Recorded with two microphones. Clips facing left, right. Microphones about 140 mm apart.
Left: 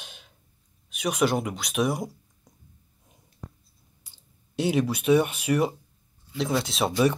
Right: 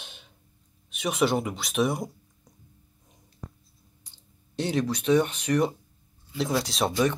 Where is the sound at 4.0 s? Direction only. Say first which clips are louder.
Right 2 dB; 5° left (ahead or behind).